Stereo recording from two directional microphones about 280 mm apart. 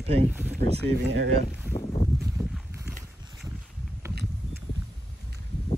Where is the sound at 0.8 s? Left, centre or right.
Right.